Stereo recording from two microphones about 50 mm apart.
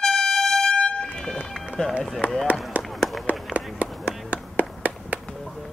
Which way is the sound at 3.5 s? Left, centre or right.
Right.